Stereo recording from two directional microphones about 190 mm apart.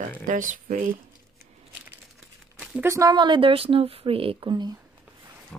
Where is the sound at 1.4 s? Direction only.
10° right (ahead or behind).